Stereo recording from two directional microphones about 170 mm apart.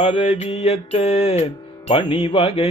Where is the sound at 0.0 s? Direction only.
40° left (ahead or behind).